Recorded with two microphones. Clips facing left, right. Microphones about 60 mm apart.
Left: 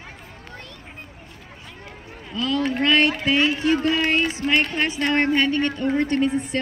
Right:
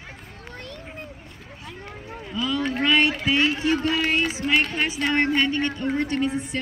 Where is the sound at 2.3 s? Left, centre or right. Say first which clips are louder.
Left 2 dB; centre.